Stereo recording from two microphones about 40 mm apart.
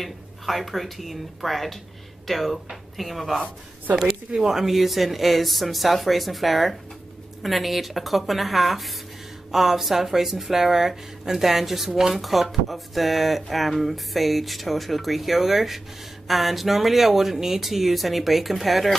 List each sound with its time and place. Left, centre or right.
0.0 s speech: centre